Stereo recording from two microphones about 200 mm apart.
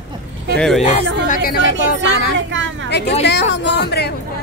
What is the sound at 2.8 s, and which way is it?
Speech, 60° left (ahead or behind).